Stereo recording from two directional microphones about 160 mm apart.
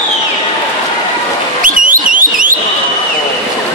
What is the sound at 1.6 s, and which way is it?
Alarm, 60° right (ahead or behind).